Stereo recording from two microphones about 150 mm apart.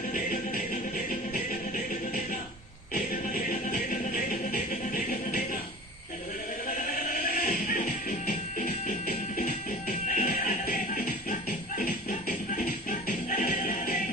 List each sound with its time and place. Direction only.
0.1 s music: 65° left (ahead or behind)
2.9 s music: 65° left (ahead or behind)
6.8 s music: 65° left (ahead or behind)